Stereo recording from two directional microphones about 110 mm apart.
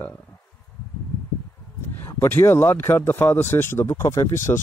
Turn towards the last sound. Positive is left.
turn(degrees=25)  # may be behind; listen again after turning